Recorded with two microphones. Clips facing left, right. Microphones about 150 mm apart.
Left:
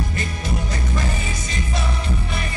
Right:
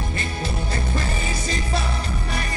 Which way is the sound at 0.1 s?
30° right (ahead or behind).